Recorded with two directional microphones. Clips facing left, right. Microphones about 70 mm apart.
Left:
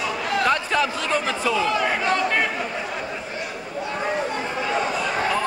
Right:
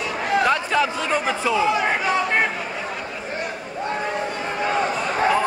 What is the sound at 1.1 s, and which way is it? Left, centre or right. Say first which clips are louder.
Speech: right 1 dB; centre.